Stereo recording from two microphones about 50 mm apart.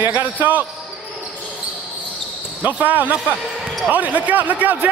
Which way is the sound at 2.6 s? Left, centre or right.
Right.